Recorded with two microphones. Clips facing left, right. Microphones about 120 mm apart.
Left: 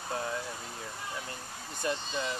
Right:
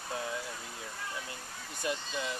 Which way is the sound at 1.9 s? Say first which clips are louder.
Left 2 dB; 20° left (ahead or behind).